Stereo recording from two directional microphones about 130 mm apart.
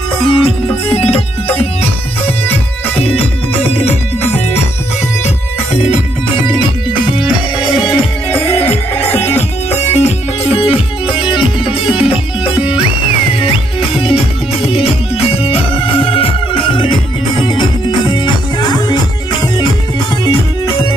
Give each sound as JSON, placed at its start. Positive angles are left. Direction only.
{"t": 0.3, "sound": "music", "side_deg": 45}
{"t": 3.0, "sound": "music", "side_deg": 50}
{"t": 6.2, "sound": "music", "side_deg": 40}
{"t": 7.2, "sound": "music", "side_deg": -5}
{"t": 7.8, "sound": "music", "side_deg": 45}